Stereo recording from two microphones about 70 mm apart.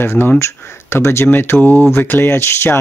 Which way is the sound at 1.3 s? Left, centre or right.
Left.